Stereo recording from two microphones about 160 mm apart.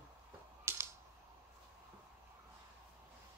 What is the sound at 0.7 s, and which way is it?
Computer keyboard, 15° right (ahead or behind).